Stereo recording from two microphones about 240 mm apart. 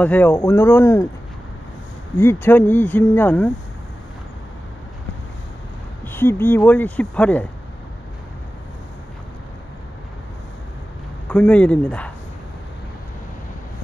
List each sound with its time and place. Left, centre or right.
0.0 s speech: centre
2.1 s speech: centre
6.0 s speech: centre
11.2 s speech: centre